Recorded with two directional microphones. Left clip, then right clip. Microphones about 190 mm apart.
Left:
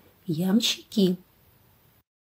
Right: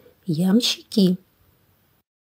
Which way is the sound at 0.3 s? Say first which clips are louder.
Right 4 dB; 30° right (ahead or behind).